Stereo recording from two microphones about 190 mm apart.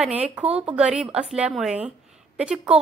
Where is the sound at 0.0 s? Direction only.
5° right (ahead or behind).